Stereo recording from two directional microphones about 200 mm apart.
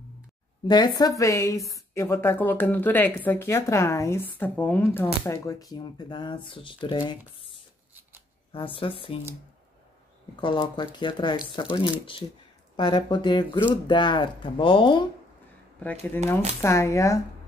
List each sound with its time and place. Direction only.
0.7 s a woman's voice: 20° left (ahead or behind)
8.5 s speech: 25° left (ahead or behind)
10.3 s speech: 25° left (ahead or behind)
12.7 s speech: 20° left (ahead or behind)
15.8 s a woman's voice: 10° left (ahead or behind)